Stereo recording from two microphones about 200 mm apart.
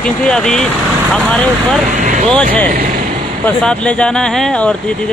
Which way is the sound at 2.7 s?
45° right (ahead or behind).